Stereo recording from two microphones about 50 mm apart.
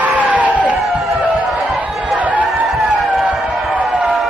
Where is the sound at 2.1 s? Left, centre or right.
Right.